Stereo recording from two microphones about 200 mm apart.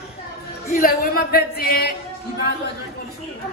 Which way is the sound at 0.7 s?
45° left (ahead or behind).